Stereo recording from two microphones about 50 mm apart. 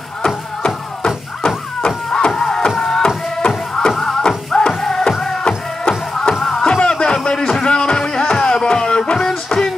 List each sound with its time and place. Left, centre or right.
0.6 s music: centre
3.9 s music: centre; by 9.7 s left